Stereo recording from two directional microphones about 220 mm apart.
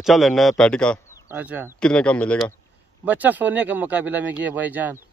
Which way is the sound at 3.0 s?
10° right (ahead or behind).